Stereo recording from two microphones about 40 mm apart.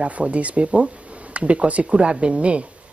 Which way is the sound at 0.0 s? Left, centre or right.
Right.